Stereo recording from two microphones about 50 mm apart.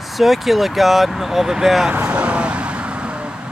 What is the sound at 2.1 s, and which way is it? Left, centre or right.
Vehicle, right.